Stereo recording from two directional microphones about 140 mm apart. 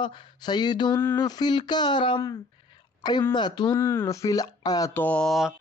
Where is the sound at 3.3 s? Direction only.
30° left (ahead or behind).